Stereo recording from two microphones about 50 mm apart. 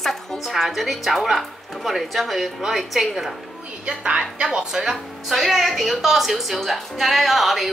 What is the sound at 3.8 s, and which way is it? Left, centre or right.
A woman's voice, right.